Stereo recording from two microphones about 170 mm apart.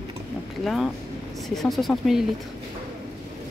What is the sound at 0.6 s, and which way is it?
Speech, centre (ahead or behind).